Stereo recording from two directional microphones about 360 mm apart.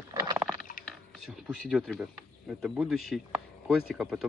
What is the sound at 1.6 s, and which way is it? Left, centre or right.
Speech, centre.